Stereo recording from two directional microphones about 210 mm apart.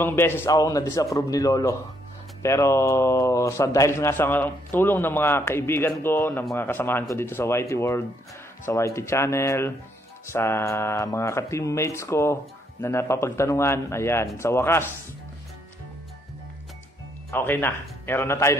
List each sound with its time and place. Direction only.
0.0 s speech: 10° left (ahead or behind)
17.3 s speech: 10° left (ahead or behind)